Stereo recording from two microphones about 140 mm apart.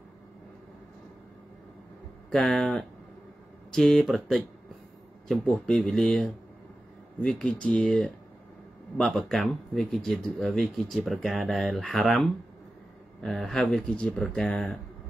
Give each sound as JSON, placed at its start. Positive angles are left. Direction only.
{"t": 2.3, "sound": "speech", "side_deg": 0}